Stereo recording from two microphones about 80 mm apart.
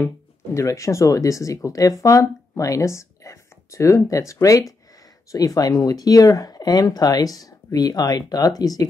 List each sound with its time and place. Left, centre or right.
0.6 s speech: left